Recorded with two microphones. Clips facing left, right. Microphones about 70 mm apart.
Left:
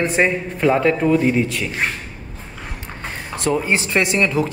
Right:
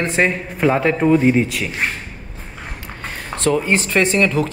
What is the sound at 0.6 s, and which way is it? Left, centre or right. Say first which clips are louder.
Speech: even; centre.